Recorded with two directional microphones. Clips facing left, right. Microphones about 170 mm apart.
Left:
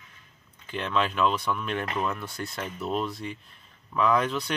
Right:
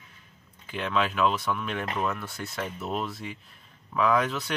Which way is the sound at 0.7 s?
5° right (ahead or behind).